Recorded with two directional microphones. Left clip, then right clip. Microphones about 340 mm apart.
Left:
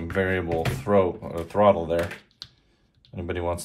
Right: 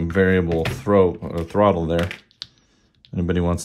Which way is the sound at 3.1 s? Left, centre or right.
Right.